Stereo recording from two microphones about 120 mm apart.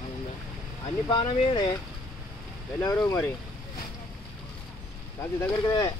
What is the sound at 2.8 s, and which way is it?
Speech, 30° left (ahead or behind).